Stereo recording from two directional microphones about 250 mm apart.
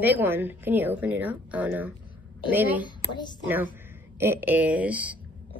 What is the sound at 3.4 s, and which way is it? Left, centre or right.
A woman's voice, centre.